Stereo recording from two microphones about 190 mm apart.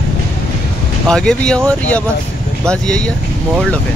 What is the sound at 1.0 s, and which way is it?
Speech, 5° left (ahead or behind).